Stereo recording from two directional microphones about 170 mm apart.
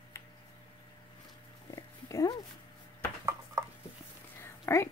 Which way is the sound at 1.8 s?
20° left (ahead or behind).